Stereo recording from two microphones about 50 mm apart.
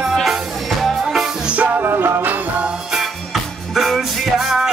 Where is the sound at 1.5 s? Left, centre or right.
Right.